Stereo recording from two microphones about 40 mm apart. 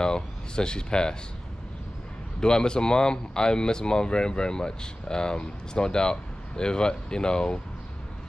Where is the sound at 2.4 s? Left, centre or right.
Centre.